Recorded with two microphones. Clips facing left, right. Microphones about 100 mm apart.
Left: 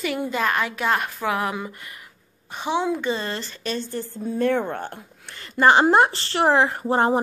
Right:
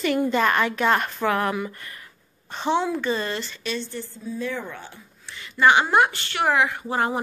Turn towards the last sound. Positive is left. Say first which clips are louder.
# left 5 dB
turn(degrees=30)  # may be behind; listen again after turning